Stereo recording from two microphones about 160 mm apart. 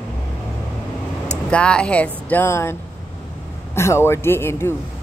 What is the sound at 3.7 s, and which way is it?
Speech, 15° left (ahead or behind).